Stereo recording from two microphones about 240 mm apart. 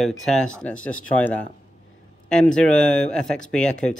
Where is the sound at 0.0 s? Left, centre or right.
Centre.